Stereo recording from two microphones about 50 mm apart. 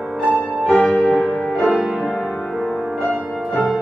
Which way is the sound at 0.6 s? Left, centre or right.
Centre.